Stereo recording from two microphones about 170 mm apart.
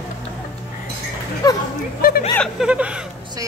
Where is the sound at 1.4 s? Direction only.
20° left (ahead or behind).